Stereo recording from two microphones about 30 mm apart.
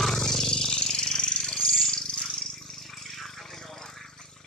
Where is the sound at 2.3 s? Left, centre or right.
Centre.